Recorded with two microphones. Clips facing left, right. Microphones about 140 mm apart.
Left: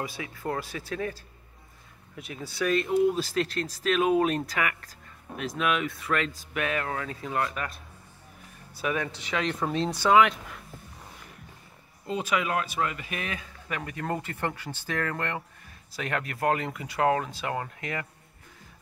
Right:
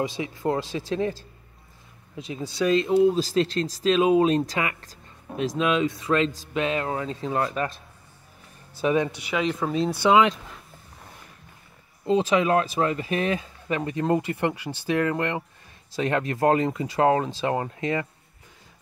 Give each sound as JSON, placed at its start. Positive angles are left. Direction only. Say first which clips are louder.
{"t": 0.2, "sound": "speech", "louder": "right 6 dB", "side_deg": -25}
{"t": 2.1, "sound": "speech", "louder": "right 5 dB", "side_deg": -25}
{"t": 8.8, "sound": "speech", "louder": "right 7 dB", "side_deg": -20}
{"t": 10.0, "sound": "speech", "louder": "right 2 dB", "side_deg": -20}
{"t": 12.1, "sound": "speech", "louder": "right 8 dB", "side_deg": -25}